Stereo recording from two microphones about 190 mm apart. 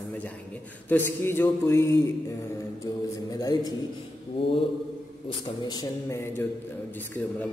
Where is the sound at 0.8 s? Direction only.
10° left (ahead or behind).